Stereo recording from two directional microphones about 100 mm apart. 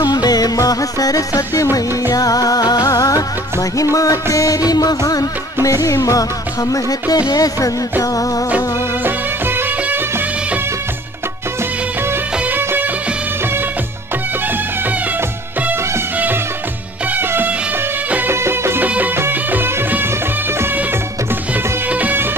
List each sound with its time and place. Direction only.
0.0 s music of bollywood: 40° left (ahead or behind)
8.5 s music of bollywood: 20° right (ahead or behind)
12.4 s music: 20° right (ahead or behind)
17.1 s music of bollywood: 20° right (ahead or behind)
18.1 s music: 25° right (ahead or behind)
21.8 s music: 15° right (ahead or behind)